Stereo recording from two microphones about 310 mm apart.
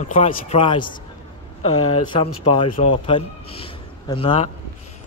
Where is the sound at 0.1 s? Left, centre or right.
Left.